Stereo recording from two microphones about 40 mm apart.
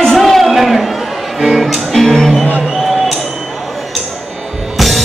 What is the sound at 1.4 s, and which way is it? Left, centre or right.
Music, centre.